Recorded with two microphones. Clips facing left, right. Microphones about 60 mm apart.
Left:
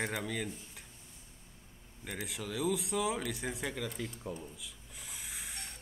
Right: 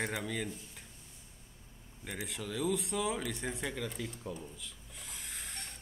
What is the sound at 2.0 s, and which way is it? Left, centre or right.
A man's voice, centre.